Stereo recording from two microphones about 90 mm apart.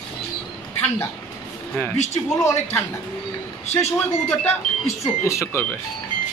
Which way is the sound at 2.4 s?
30° left (ahead or behind).